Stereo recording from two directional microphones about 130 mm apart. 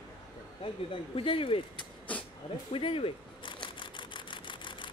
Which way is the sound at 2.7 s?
45° left (ahead or behind).